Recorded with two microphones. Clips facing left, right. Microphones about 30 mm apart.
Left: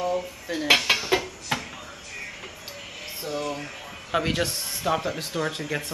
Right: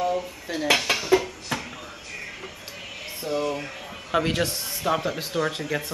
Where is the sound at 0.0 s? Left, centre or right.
Centre.